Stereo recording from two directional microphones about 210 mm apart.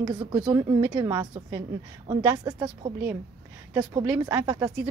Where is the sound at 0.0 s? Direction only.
20° right (ahead or behind).